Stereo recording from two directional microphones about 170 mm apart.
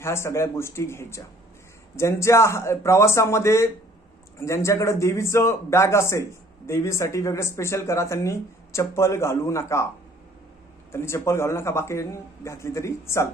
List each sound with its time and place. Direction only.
0.0 s speech: 15° left (ahead or behind)
10.9 s speech: 15° left (ahead or behind)